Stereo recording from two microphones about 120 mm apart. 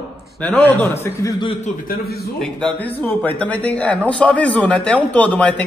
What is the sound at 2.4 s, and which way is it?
A man's voice, 10° left (ahead or behind).